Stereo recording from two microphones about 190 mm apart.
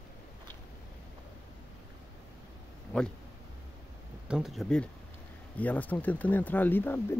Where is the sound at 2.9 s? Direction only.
5° left (ahead or behind).